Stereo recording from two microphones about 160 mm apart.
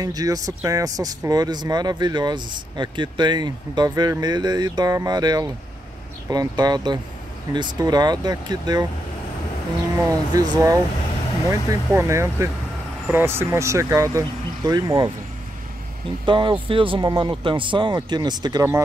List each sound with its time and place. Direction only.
0.0 s speech: 25° right (ahead or behind)
9.9 s speech: 20° right (ahead or behind)
16.3 s speech: 30° right (ahead or behind)